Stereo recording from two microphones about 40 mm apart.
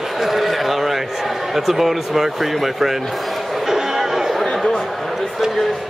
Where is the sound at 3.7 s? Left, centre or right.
Centre.